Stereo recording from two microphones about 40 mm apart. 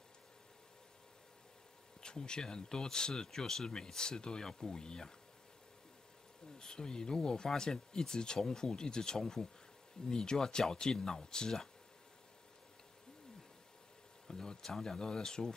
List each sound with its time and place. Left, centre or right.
2.0 s speech: centre
6.6 s speech: centre
14.2 s a sound: centre
14.7 s speech: centre